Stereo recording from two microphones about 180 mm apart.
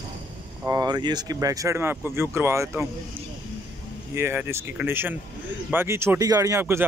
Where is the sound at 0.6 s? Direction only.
20° right (ahead or behind).